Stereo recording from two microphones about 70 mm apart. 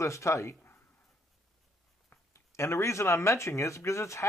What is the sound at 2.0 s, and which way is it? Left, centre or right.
Speech, left.